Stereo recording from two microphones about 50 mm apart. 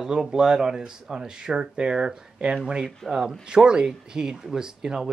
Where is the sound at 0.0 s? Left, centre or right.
Centre.